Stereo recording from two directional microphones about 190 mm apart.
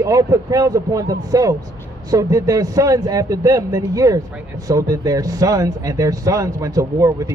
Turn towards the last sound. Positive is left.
turn(degrees=-15)  # may be behind; listen again after turning